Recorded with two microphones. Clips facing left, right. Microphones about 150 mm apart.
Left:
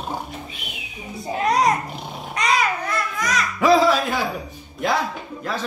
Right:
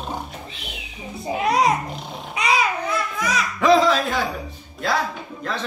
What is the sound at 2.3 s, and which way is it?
Babbling, 5° right (ahead or behind).